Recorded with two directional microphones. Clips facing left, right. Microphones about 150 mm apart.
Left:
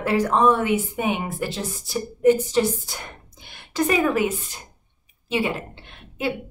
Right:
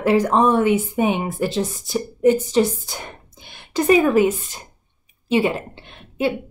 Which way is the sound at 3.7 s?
25° right (ahead or behind).